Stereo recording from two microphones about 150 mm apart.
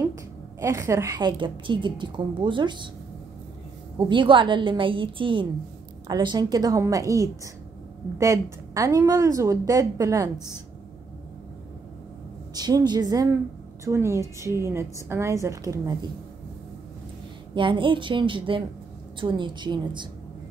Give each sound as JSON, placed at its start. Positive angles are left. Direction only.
{"t": 0.0, "sound": "a woman's voice", "side_deg": -20}
{"t": 4.1, "sound": "a woman's voice", "side_deg": -35}
{"t": 12.5, "sound": "a woman's voice", "side_deg": -25}
{"t": 17.6, "sound": "a woman's voice", "side_deg": -35}